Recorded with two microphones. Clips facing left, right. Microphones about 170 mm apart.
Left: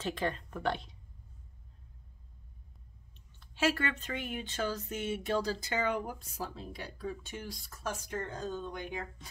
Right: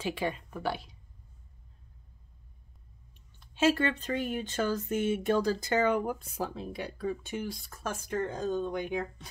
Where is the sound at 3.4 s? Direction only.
20° right (ahead or behind); by 8.2 s 55° right (ahead or behind).